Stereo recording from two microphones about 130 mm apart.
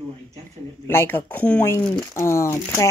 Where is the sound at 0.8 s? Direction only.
15° left (ahead or behind).